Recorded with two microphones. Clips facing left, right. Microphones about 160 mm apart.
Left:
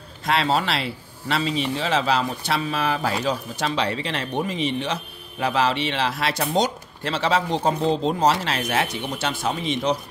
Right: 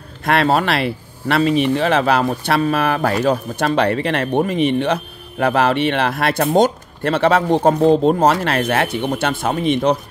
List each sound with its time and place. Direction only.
0.2 s speech: 55° right (ahead or behind)